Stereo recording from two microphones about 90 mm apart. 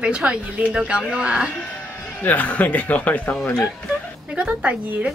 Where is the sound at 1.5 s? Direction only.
20° left (ahead or behind).